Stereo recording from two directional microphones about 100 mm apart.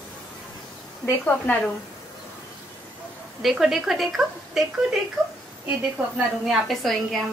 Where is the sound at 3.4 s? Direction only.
5° right (ahead or behind).